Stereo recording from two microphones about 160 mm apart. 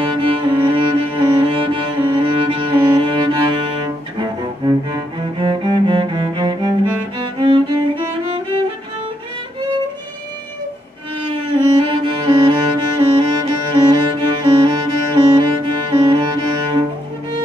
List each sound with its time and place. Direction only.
0.0 s music: 30° right (ahead or behind)
4.9 s cello: 30° right (ahead or behind)
11.5 s cello: 30° right (ahead or behind)
15.9 s music: 30° right (ahead or behind)